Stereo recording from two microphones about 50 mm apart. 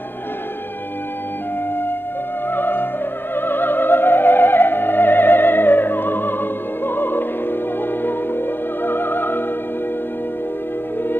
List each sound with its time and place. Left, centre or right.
2.5 s opera: left
3.3 s music: left